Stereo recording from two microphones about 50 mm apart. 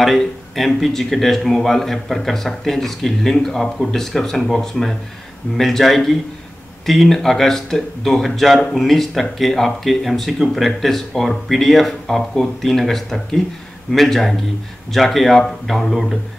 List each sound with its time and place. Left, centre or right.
0.0 s speech: centre